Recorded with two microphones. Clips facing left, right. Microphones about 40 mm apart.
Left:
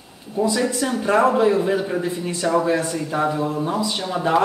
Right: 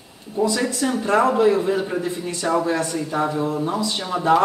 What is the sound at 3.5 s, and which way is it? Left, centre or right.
Speech, centre.